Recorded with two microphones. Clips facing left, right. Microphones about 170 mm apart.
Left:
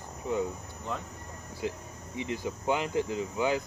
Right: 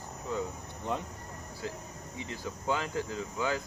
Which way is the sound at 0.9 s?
20° right (ahead or behind).